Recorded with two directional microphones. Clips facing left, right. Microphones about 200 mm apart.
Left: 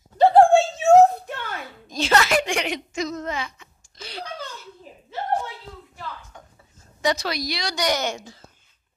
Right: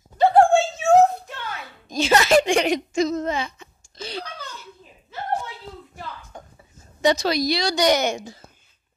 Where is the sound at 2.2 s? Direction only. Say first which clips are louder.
Right 4 dB; 25° right (ahead or behind).